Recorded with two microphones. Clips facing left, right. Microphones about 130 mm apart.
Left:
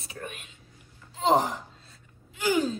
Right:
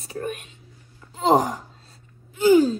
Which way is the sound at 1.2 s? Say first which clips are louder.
Right 4 dB; 40° right (ahead or behind).